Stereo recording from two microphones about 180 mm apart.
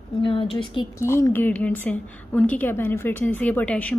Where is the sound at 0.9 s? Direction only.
15° left (ahead or behind).